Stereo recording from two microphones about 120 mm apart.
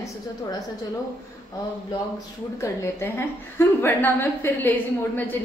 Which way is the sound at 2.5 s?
20° left (ahead or behind).